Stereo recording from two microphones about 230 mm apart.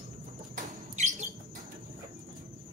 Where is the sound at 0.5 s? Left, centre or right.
Right.